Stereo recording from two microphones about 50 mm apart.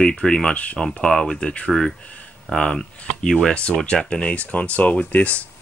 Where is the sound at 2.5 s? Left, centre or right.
Centre.